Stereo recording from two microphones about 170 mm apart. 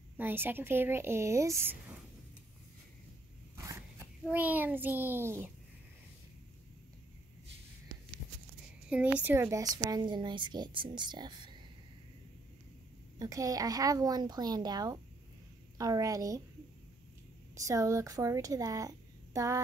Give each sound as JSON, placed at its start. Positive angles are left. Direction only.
{"t": 0.2, "sound": "speech", "side_deg": -10}
{"t": 4.2, "sound": "speech", "side_deg": -10}
{"t": 8.8, "sound": "a sound", "side_deg": -5}
{"t": 9.2, "sound": "a woman's voice", "side_deg": -15}
{"t": 13.2, "sound": "a woman's voice", "side_deg": -20}
{"t": 17.6, "sound": "a child's voice", "side_deg": -20}